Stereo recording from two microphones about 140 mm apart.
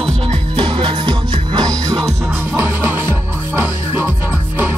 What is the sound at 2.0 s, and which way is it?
Music, 15° right (ahead or behind).